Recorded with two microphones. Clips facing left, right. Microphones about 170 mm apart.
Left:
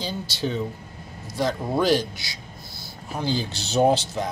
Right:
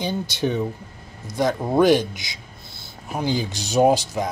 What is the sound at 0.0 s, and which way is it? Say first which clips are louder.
Speech: right 4 dB; 20° right (ahead or behind).